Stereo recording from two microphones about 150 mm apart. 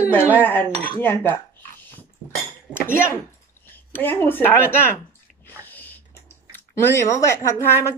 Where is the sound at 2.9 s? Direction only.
15° left (ahead or behind).